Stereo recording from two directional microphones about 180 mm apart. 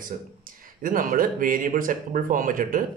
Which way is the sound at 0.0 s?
50° right (ahead or behind).